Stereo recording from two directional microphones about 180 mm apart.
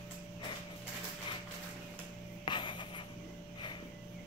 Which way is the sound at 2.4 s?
25° left (ahead or behind).